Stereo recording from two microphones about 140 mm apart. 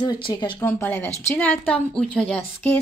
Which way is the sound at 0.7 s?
15° left (ahead or behind).